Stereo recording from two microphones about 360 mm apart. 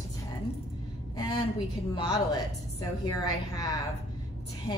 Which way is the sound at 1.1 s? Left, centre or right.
Centre.